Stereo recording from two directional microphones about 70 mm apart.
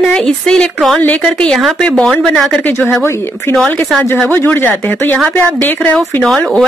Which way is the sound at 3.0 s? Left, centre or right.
Left.